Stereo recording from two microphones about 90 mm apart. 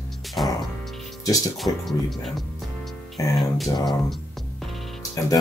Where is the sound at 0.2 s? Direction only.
Centre (ahead or behind).